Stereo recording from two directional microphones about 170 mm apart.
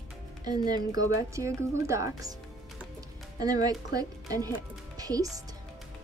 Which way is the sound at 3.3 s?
20° right (ahead or behind).